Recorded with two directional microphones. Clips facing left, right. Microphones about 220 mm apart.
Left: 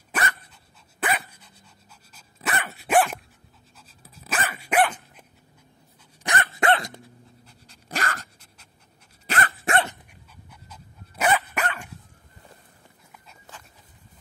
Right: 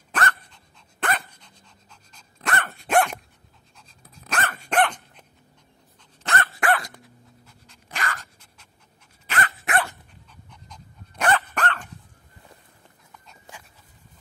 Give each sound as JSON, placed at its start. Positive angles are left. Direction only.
{"t": 0.1, "sound": "dog", "side_deg": 10}
{"t": 6.2, "sound": "dog", "side_deg": 15}
{"t": 7.4, "sound": "dog", "side_deg": 35}
{"t": 9.3, "sound": "dog", "side_deg": 25}
{"t": 10.3, "sound": "dog", "side_deg": 5}